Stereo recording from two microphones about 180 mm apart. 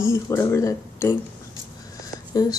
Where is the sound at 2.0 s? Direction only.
20° left (ahead or behind).